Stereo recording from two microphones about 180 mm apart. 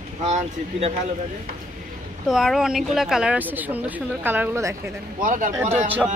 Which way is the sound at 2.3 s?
Centre (ahead or behind).